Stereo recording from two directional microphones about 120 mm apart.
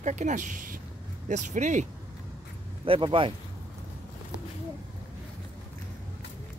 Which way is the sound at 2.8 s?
50° right (ahead or behind).